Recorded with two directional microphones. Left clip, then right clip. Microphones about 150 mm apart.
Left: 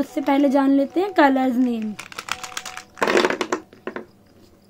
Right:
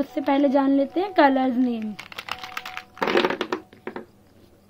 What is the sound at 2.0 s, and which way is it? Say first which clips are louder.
Typing: left 2 dB; 10° right (ahead or behind).